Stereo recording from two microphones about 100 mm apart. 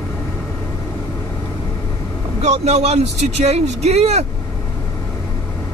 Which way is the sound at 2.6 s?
90° right.